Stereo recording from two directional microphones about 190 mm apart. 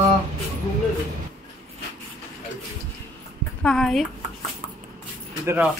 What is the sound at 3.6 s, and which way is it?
Speech, 5° left (ahead or behind).